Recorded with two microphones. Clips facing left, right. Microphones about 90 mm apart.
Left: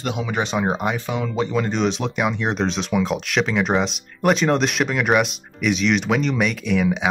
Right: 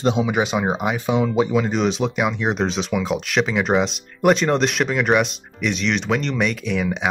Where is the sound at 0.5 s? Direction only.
Centre (ahead or behind).